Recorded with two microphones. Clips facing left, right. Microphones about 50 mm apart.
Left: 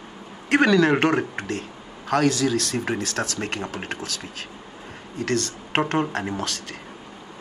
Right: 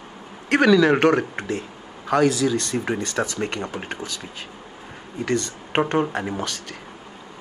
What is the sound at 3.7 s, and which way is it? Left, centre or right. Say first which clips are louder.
Speech: even; centre.